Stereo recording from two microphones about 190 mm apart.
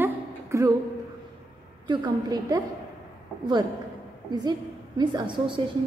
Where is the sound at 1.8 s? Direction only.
25° right (ahead or behind).